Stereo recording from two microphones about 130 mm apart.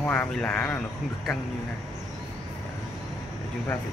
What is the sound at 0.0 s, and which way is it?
Speech, 10° left (ahead or behind).